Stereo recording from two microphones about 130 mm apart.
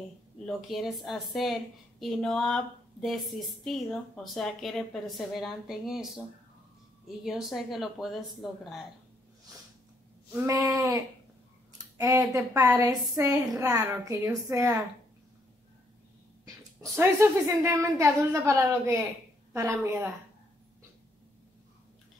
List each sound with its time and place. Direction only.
0.5 s a woman's voice: centre (ahead or behind)
7.2 s a woman's voice: centre (ahead or behind)
10.3 s a woman's voice: 20° right (ahead or behind)
12.0 s a woman's voice: 25° right (ahead or behind)
16.4 s a woman's voice: 20° right (ahead or behind)